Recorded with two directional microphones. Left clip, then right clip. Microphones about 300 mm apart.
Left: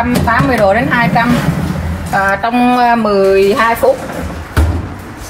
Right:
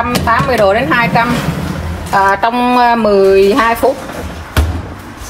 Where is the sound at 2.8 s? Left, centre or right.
Right.